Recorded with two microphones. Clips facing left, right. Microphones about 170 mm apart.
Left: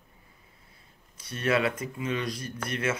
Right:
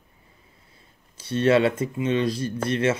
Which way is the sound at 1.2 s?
30° right (ahead or behind).